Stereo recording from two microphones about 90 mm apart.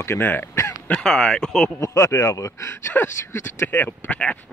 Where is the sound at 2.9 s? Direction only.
20° left (ahead or behind).